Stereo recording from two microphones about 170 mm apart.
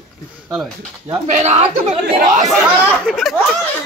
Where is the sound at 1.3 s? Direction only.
40° right (ahead or behind).